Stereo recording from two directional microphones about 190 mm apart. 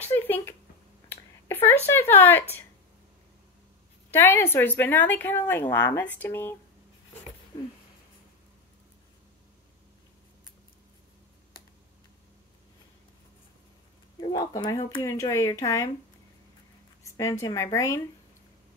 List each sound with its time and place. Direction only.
0.0 s a sound: 10° left (ahead or behind)
1.9 s a woman's voice: 10° left (ahead or behind)
4.1 s a woman's voice: 10° left (ahead or behind)
14.3 s a woman's voice: 20° left (ahead or behind)
17.0 s a woman's voice: 15° left (ahead or behind)